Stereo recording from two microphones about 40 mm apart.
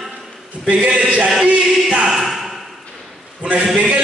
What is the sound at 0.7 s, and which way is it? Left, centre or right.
A man's voice, right.